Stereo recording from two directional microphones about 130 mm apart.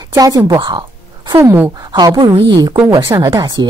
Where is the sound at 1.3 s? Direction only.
15° right (ahead or behind).